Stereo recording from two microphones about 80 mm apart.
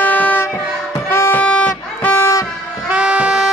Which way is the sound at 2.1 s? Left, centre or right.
Left.